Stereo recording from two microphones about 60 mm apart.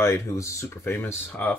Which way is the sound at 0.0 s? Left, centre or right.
Left.